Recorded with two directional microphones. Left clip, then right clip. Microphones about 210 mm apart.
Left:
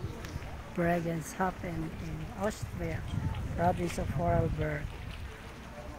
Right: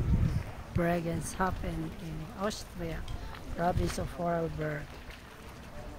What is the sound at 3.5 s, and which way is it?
Speech, centre (ahead or behind).